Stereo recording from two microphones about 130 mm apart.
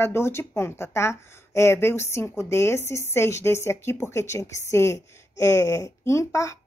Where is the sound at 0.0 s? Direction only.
20° left (ahead or behind).